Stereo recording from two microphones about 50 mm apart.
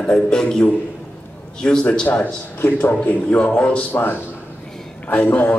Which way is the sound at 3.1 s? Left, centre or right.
Left.